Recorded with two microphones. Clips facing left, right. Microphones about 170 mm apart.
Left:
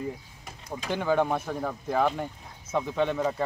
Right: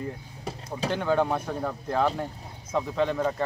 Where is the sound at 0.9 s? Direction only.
5° left (ahead or behind).